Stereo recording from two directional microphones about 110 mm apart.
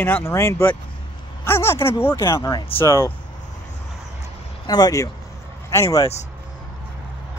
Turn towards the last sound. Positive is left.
turn(degrees=30)  # may be behind; listen again after turning